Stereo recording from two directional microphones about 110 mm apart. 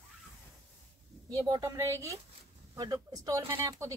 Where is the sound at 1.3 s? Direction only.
35° right (ahead or behind).